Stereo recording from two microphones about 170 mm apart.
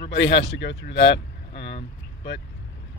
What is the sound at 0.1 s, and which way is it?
Speech, 90° left.